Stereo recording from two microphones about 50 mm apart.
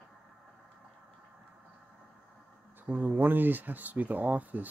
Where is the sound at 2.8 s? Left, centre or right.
Right.